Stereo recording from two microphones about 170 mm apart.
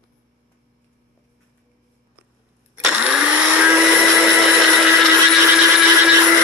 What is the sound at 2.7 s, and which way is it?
Blender, 5° right (ahead or behind).